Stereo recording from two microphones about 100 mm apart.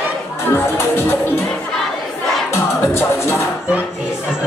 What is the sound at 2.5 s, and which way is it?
Music, 25° left (ahead or behind).